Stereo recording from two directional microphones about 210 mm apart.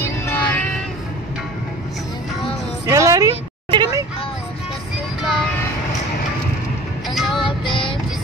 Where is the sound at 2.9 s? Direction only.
15° right (ahead or behind).